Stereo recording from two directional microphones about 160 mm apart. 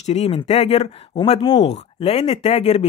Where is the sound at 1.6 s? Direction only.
40° left (ahead or behind).